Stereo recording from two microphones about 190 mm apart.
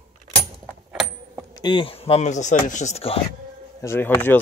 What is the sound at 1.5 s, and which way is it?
Speech, 25° left (ahead or behind).